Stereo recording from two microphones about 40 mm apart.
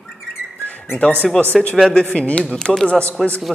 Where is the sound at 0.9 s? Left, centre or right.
Left.